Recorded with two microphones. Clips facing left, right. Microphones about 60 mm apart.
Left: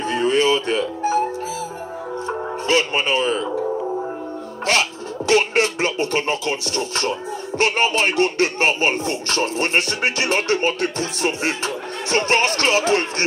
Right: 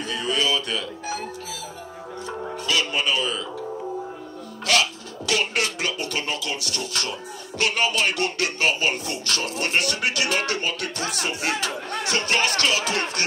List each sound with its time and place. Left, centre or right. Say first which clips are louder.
0.0 s music: left 7 dB; left
4.6 s speech: left 2 dB; left